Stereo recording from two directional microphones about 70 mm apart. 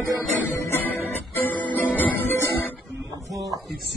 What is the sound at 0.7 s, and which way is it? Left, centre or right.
Music, left.